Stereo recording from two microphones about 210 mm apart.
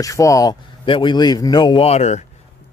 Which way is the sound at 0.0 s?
15° left (ahead or behind).